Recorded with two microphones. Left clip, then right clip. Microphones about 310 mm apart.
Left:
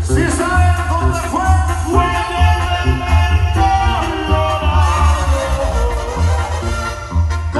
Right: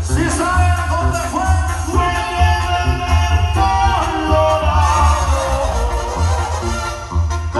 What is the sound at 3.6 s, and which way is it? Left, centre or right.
Music, centre.